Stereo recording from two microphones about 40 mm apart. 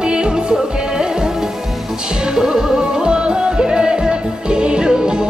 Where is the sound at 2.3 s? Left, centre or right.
Centre.